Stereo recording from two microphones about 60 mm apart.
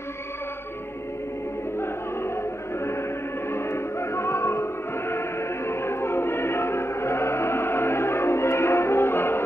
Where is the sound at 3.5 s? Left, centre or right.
Left.